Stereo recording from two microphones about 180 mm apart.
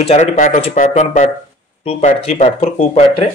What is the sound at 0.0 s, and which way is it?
A man's voice, 40° left (ahead or behind).